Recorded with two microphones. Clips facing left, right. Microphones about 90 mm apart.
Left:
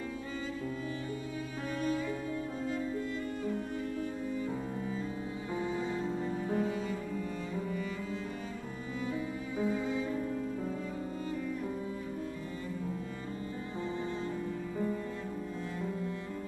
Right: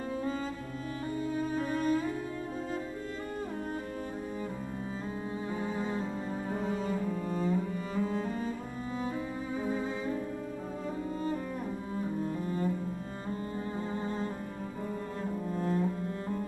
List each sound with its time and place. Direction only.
1.3 s music: 40° right (ahead or behind)
5.8 s music: 40° right (ahead or behind)
6.6 s cello: 40° right (ahead or behind)
9.6 s music: 35° right (ahead or behind)
12.0 s cello: 40° right (ahead or behind)